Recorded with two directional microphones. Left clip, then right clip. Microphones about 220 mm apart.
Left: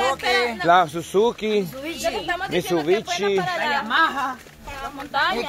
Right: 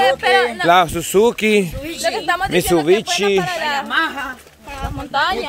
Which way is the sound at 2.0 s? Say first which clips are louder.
Right 7 dB; 50° right (ahead or behind).